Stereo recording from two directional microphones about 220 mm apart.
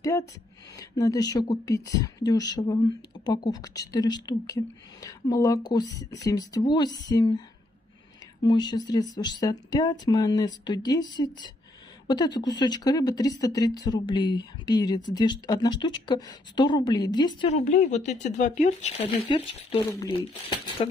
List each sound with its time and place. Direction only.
0.0 s a woman's voice: 15° left (ahead or behind)